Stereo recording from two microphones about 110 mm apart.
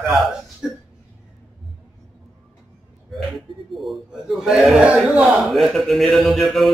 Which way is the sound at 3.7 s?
Centre (ahead or behind).